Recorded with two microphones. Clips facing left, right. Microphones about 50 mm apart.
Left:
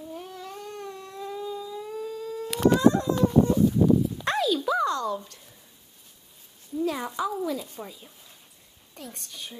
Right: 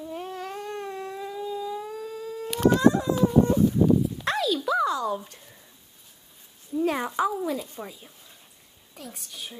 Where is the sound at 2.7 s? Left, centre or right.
Centre.